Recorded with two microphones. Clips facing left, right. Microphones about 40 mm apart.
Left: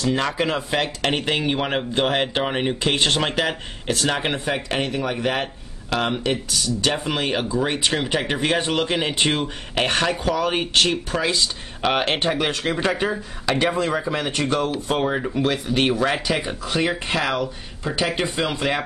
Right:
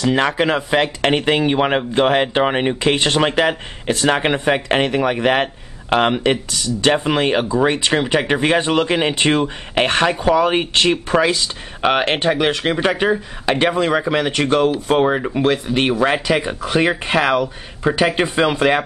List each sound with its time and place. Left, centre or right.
0.0 s speech: right
14.7 s speech: right